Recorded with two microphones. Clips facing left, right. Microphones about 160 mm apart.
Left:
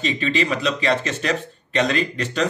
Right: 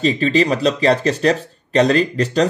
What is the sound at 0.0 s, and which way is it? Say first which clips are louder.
Speech: right 6 dB; 35° right (ahead or behind).